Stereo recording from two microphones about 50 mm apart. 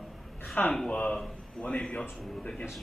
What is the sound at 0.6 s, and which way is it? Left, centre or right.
A man's voice, left.